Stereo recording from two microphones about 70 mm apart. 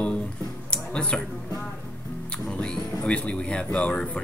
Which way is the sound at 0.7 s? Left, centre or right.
Centre.